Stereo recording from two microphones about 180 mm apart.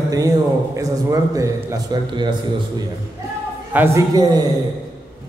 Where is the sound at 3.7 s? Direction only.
15° right (ahead or behind).